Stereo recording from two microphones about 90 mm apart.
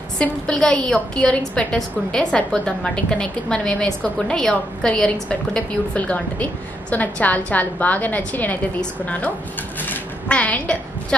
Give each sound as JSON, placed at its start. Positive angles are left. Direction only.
{"t": 0.2, "sound": "a woman's voice", "side_deg": 10}